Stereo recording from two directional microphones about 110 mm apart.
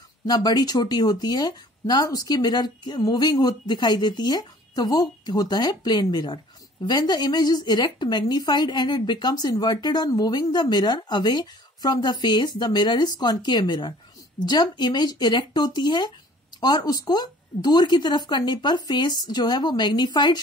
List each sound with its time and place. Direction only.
0.3 s speech: 40° left (ahead or behind)